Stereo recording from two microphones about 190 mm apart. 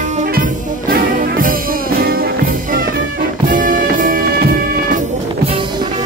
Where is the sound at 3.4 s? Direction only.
45° right (ahead or behind).